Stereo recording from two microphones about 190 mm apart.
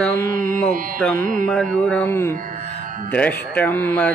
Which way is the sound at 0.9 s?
5° left (ahead or behind).